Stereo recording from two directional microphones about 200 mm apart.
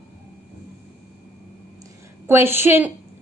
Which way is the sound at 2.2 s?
10° right (ahead or behind).